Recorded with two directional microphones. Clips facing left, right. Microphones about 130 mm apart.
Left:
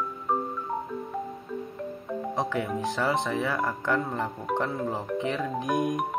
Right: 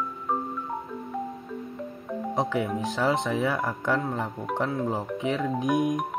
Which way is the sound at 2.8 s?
15° right (ahead or behind).